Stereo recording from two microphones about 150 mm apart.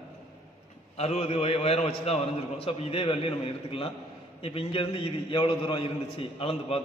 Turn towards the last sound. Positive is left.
turn(degrees=40)  # may be behind; listen again after turning